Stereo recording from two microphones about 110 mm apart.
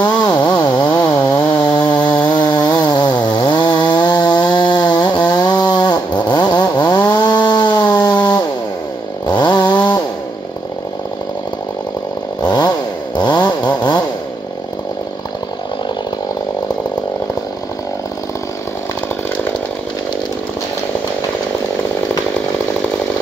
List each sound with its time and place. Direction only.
0.0 s chainsaw: 40° left (ahead or behind)
12.4 s chainsaw: 40° left (ahead or behind)